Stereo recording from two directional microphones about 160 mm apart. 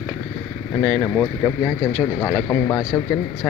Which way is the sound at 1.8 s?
15° left (ahead or behind).